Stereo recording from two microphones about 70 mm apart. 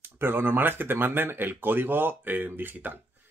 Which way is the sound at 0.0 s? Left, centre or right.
Right.